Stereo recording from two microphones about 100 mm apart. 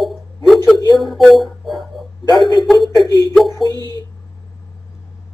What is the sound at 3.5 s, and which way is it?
Speech, 45° right (ahead or behind).